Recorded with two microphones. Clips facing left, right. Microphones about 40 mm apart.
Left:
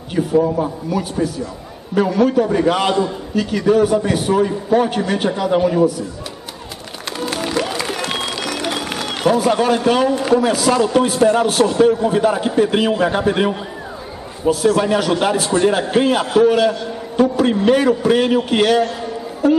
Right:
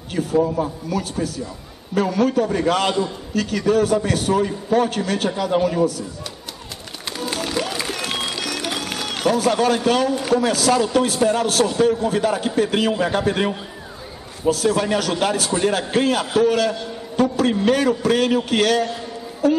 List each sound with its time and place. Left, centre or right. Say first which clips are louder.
0.1 s a man's voice: left 3 dB; centre
7.2 s music: left 3 dB; centre
7.6 s applause: left 3 dB; centre
8.6 s a man's voice: left 3 dB; left